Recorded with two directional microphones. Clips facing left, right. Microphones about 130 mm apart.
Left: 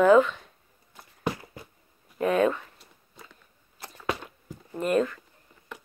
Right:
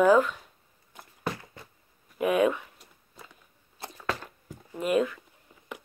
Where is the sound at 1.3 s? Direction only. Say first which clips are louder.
Left 1 dB; 30° left (ahead or behind).